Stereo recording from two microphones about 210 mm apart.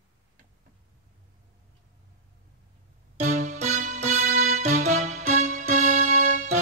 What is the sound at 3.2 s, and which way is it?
Music, 35° right (ahead or behind).